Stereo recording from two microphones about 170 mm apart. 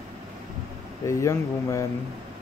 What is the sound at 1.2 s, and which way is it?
Speech, 15° left (ahead or behind).